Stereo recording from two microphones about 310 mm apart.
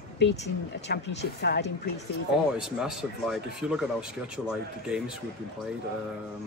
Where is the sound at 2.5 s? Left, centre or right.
Centre.